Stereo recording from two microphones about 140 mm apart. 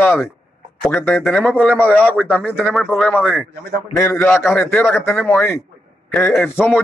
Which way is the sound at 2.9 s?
10° left (ahead or behind).